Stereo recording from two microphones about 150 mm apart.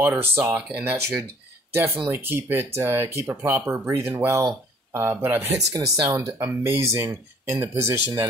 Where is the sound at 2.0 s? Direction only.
15° right (ahead or behind).